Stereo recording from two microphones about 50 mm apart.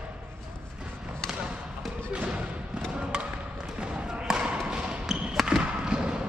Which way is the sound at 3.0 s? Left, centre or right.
Centre.